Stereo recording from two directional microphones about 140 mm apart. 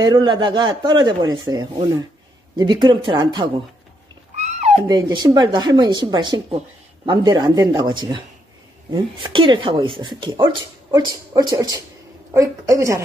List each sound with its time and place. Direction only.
0.1 s speech: 35° right (ahead or behind)
4.4 s a sound: 55° right (ahead or behind)
4.8 s speech: 30° right (ahead or behind)